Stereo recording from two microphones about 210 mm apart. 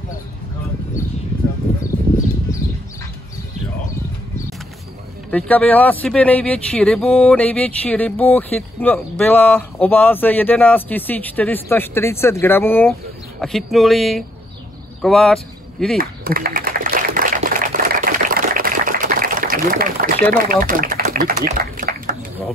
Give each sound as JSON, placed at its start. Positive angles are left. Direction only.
{"t": 5.3, "sound": "speech", "side_deg": 5}
{"t": 16.0, "sound": "a sound", "side_deg": -45}
{"t": 20.4, "sound": "speech", "side_deg": -40}